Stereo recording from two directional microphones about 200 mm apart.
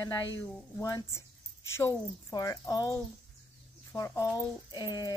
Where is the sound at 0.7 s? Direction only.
15° left (ahead or behind).